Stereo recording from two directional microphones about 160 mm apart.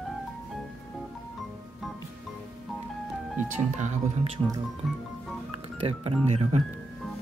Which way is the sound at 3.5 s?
45° right (ahead or behind).